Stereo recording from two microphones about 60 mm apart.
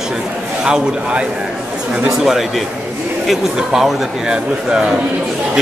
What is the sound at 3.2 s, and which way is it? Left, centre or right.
Speech, centre.